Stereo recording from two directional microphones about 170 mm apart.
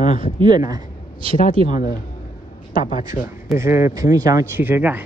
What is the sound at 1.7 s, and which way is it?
Speech, 55° left (ahead or behind).